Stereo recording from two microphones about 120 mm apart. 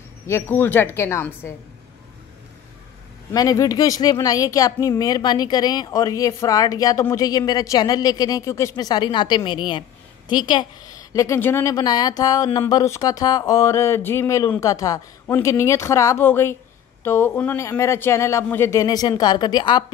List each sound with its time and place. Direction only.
0.3 s a man's voice: 15° left (ahead or behind)
3.3 s speech: 30° left (ahead or behind)
11.7 s a man's voice: 35° left (ahead or behind)